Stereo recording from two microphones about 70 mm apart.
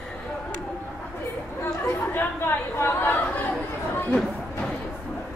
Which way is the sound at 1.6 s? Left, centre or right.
Left.